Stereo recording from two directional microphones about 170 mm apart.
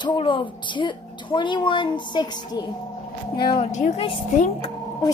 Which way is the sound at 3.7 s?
45° left (ahead or behind).